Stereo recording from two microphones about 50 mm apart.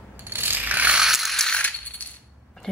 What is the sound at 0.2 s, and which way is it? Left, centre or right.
Pulleys, right.